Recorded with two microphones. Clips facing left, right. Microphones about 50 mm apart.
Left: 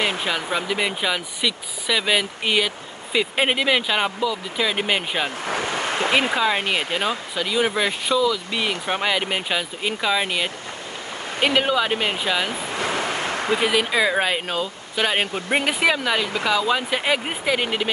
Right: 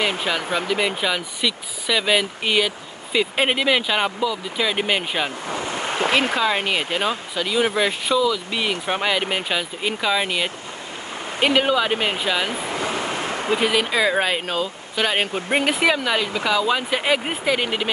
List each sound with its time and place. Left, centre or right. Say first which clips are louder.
0.0 s speech: right 1 dB; centre
5.5 s a sound: left 2 dB; left
6.1 s speech: even; centre
12.8 s waves: left 3 dB; left
13.7 s speech: even; centre